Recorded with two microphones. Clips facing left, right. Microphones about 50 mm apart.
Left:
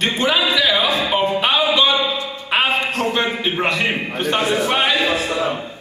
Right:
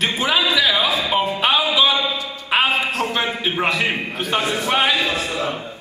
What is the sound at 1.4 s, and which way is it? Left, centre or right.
Music, centre.